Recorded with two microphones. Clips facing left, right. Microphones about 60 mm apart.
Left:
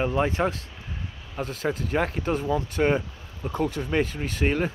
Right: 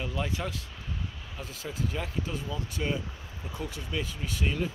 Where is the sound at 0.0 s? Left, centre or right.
Left.